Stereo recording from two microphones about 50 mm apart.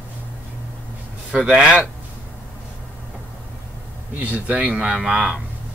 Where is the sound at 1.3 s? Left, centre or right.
Centre.